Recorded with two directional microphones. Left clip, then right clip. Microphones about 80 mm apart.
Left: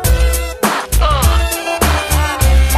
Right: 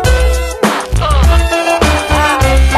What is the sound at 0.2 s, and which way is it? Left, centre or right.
Music, centre.